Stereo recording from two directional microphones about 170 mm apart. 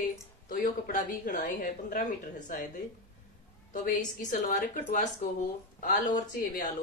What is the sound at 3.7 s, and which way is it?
A woman's voice, 55° left (ahead or behind).